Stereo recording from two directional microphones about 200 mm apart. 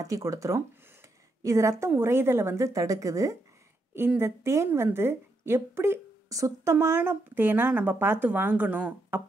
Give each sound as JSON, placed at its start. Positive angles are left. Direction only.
{"t": 0.0, "sound": "a woman's voice", "side_deg": -15}